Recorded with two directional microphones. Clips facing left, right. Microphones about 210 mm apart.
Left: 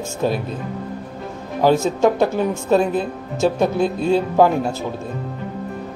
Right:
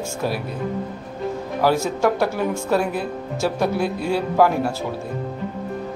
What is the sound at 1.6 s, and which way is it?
Speech, 20° left (ahead or behind).